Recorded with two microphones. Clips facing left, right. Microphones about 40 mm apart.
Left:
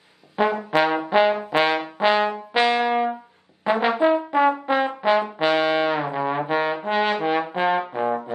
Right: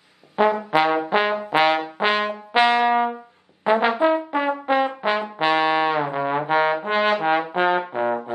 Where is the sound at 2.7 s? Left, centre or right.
Right.